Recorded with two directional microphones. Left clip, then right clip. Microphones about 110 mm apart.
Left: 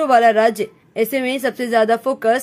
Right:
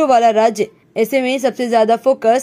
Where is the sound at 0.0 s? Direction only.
25° right (ahead or behind).